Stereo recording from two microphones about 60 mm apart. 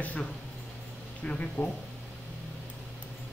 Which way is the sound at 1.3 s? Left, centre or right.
Left.